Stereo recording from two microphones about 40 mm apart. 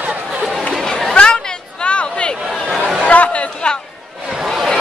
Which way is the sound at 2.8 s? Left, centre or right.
Right.